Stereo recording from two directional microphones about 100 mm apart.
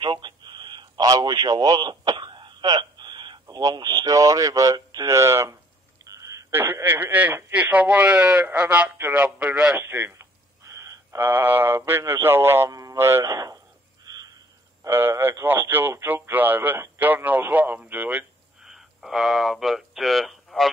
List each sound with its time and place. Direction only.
0.0 s radio: 50° right (ahead or behind); by 5.6 s 30° right (ahead or behind)
6.0 s a sound: 35° right (ahead or behind)
6.5 s speech: 20° right (ahead or behind)
9.8 s a sound: 20° right (ahead or behind)
12.0 s a man's voice: 20° right (ahead or behind)
14.0 s frog: 35° right (ahead or behind)
14.8 s speech: 25° right (ahead or behind); by 20.7 s centre (ahead or behind)